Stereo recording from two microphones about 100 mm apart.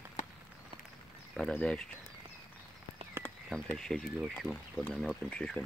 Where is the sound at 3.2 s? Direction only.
20° left (ahead or behind).